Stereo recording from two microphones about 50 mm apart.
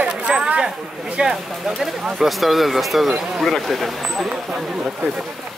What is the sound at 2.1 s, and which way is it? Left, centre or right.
Speech, centre.